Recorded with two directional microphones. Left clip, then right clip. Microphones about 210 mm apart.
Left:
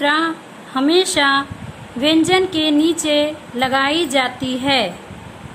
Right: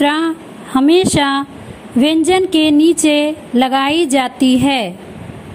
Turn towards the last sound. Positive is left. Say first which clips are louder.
# right 4 dB
turn(degrees=-30)  # may be behind; listen again after turning